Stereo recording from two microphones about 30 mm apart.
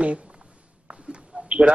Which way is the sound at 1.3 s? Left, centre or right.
Right.